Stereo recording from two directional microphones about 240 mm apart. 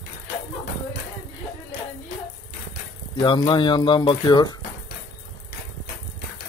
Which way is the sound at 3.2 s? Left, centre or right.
Centre.